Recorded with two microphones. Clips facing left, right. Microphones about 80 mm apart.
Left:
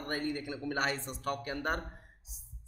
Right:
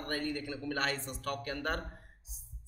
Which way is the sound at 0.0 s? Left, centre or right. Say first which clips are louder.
Left 1 dB; left.